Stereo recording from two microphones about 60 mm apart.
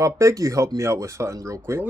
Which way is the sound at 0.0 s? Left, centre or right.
Right.